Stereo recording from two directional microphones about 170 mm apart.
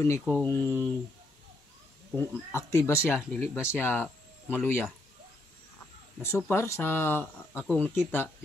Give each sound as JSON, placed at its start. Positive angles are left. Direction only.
{"t": 0.0, "sound": "speech", "side_deg": 15}
{"t": 2.1, "sound": "speech", "side_deg": 15}
{"t": 3.1, "sound": "speech", "side_deg": -5}
{"t": 3.5, "sound": "speech", "side_deg": 15}
{"t": 6.2, "sound": "speech", "side_deg": 15}